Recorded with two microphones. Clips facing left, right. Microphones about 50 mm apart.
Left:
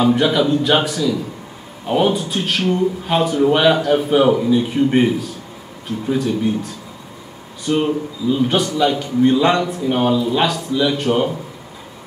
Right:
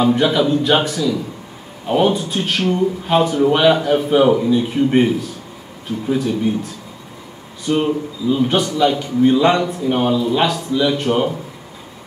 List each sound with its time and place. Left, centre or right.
0.0 s a man's voice: centre